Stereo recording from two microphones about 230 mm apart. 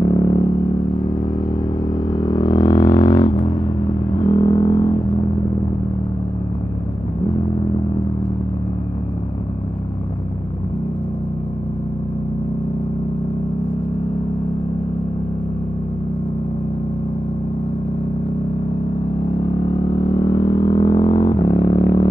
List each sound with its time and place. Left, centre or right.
0.0 s vehicle: centre
2.1 s vehicle: centre
20.2 s a sound: centre